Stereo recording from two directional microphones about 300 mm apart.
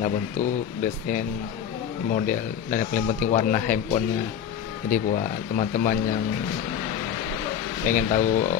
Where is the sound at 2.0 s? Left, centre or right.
Left.